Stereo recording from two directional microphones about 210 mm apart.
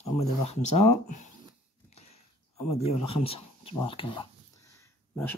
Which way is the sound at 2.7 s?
30° left (ahead or behind).